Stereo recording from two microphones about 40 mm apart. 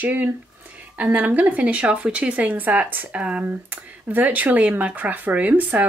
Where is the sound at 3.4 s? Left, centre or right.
Right.